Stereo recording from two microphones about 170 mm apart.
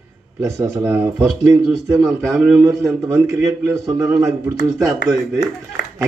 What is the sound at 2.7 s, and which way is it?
A man's voice, 20° right (ahead or behind).